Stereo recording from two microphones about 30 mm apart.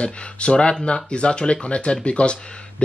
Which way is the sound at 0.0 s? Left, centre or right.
Left.